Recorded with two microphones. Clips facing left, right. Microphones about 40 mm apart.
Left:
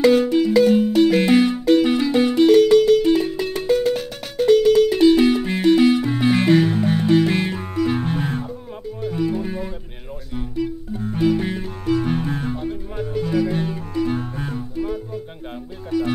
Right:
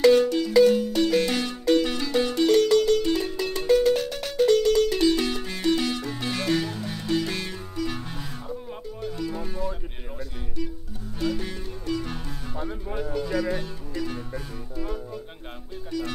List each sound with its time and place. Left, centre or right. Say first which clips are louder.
0.0 s music: left 3 dB; centre
8.0 s music: left 13 dB; left
9.1 s music: left 10 dB; left
11.1 s music: left 8 dB; left
13.2 s music: left 8 dB; centre
13.5 s music: left 6 dB; left
13.9 s music: left 9 dB; left
15.9 s music: left 8 dB; left